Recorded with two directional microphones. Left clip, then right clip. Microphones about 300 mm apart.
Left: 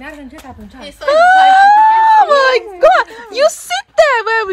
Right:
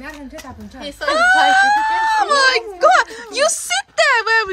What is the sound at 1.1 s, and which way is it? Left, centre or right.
Speech, centre.